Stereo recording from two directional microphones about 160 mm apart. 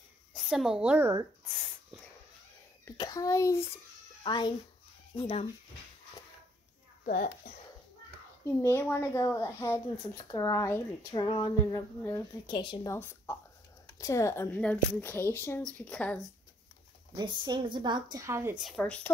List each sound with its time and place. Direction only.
0.3 s a woman's voice: centre (ahead or behind)
3.0 s speech: 20° left (ahead or behind)
4.2 s speech: 30° left (ahead or behind)
7.1 s a child's voice: 55° left (ahead or behind)
8.5 s speech: 15° left (ahead or behind)
12.0 s speech: 10° left (ahead or behind)
12.4 s speech: 30° left (ahead or behind)
12.9 s a woman's voice: 15° left (ahead or behind)
17.1 s a woman's voice: 30° right (ahead or behind)
18.1 s a woman's voice: 15° right (ahead or behind)
18.6 s speech: 5° left (ahead or behind)